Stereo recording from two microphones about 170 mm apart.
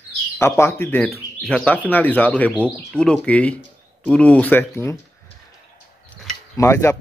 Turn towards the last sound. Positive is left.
turn(degrees=15)  # may be behind; listen again after turning